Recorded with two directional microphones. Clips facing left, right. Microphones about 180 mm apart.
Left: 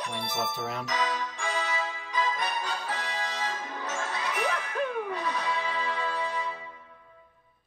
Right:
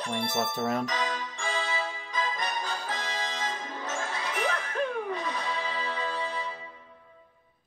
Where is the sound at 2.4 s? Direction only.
10° left (ahead or behind).